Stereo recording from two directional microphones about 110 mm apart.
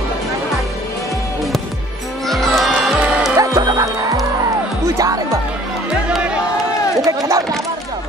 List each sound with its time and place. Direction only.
2.2 s music: centre (ahead or behind)
3.3 s music: 35° right (ahead or behind)
6.0 s music: 10° right (ahead or behind)
7.1 s run: 30° right (ahead or behind)